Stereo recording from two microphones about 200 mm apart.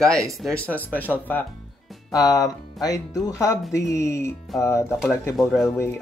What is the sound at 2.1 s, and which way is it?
Speech, 15° left (ahead or behind).